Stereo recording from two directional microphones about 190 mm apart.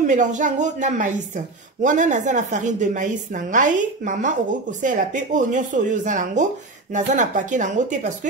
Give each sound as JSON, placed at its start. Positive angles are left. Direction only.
{"t": 0.0, "sound": "a woman's voice", "side_deg": -40}